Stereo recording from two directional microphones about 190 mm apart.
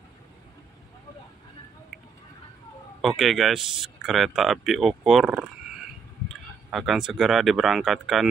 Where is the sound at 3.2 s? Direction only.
Centre (ahead or behind).